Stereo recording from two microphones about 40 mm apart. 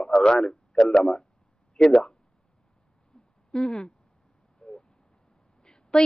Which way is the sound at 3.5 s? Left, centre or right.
Left.